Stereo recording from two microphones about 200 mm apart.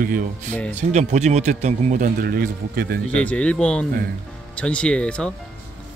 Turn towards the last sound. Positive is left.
turn(degrees=5)  # may be behind; listen again after turning